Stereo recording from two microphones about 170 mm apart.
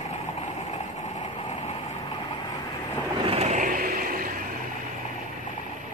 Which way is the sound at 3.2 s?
35° right (ahead or behind).